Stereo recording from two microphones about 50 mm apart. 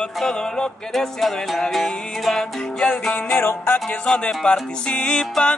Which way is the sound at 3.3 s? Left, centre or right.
Left.